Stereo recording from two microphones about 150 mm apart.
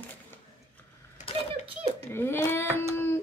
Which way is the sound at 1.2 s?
55° left (ahead or behind).